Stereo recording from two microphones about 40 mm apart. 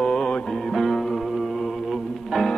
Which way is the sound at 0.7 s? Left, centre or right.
Centre.